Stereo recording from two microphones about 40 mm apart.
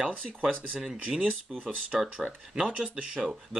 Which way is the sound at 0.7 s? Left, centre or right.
Right.